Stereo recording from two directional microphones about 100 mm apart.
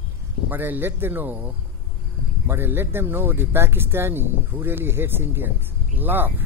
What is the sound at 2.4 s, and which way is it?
Speech, 25° right (ahead or behind).